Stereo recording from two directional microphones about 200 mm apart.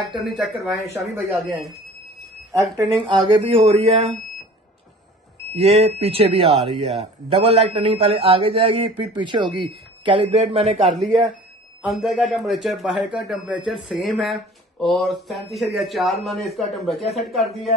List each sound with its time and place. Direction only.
0.1 s speech: centre (ahead or behind)
2.5 s speech: 15° right (ahead or behind); by 4.1 s 35° right (ahead or behind)
5.5 s speech: 30° right (ahead or behind)
11.8 s speech: centre (ahead or behind)